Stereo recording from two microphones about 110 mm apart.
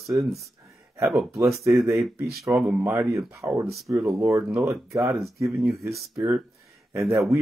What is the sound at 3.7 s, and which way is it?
Speech, centre (ahead or behind).